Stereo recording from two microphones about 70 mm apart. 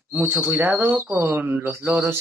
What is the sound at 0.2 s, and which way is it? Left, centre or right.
Speech, right.